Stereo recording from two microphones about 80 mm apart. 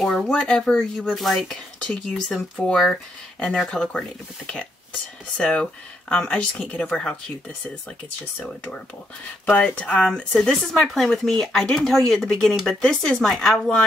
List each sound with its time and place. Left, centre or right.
0.0 s speech: centre
5.4 s speech: centre
9.8 s speech: centre
10.0 s speech: centre